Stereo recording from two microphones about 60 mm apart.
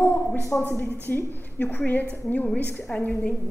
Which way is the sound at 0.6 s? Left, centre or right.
Left.